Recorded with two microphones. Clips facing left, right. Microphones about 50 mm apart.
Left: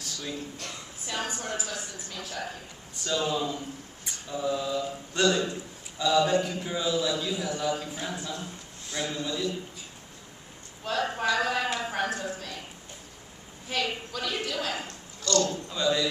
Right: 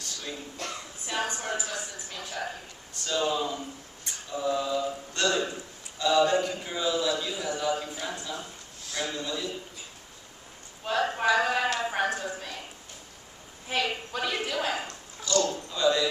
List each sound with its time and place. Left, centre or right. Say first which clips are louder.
0.0 s a sound: left 2 dB; centre
1.0 s a man's voice: right 2 dB; centre
4.0 s a sound: even; centre
5.3 s speech: left 1 dB; centre
6.0 s a man's voice: even; centre
6.4 s a man's voice: even; centre
10.8 s speech: right 2 dB; centre
13.7 s speech: right 1 dB; centre
14.7 s a sound: right 2 dB; centre
15.4 s a man's voice: right 2 dB; centre